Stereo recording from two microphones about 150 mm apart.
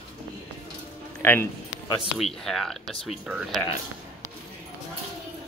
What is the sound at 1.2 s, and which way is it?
Speech, 15° left (ahead or behind).